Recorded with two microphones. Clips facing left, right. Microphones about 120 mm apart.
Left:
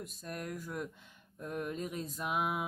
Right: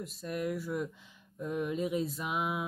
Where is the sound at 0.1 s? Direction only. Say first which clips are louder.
Right 7 dB; 5° right (ahead or behind).